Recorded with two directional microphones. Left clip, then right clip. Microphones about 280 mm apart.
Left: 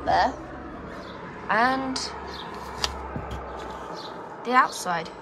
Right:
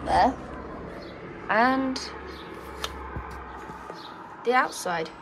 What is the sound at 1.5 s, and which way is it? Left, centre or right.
Speech, centre.